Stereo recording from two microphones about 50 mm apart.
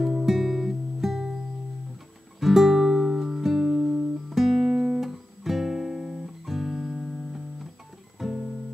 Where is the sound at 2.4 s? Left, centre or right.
Centre.